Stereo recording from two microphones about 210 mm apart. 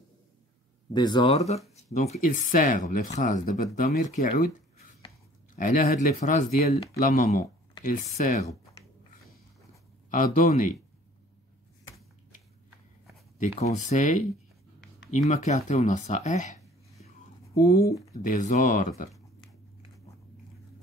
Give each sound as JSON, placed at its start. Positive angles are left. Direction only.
{"t": 0.9, "sound": "speech", "side_deg": 20}
{"t": 5.6, "sound": "speech", "side_deg": 35}
{"t": 10.1, "sound": "speech", "side_deg": 35}
{"t": 13.6, "sound": "speech", "side_deg": 35}
{"t": 15.2, "sound": "speech", "side_deg": 35}
{"t": 17.6, "sound": "speech", "side_deg": 45}